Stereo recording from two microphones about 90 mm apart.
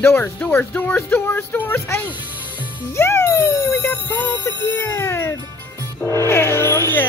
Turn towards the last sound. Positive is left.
turn(degrees=30)  # may be behind; listen again after turning